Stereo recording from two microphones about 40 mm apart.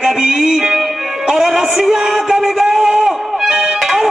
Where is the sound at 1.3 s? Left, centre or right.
Centre.